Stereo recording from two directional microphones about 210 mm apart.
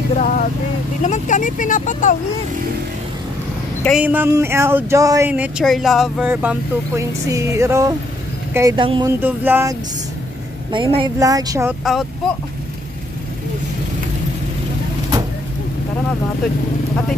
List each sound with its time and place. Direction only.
0.2 s speech: 40° left (ahead or behind)
3.8 s speech: 5° right (ahead or behind)
5.3 s speech: 5° right (ahead or behind); by 9.1 s 25° right (ahead or behind)
9.2 s speech: 10° right (ahead or behind)
10.7 s speech: 25° right (ahead or behind)
11.8 s speech: centre (ahead or behind)